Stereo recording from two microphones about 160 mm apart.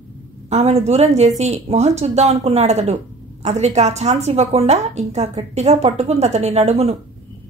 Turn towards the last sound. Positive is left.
turn(degrees=-40)  # may be behind; listen again after turning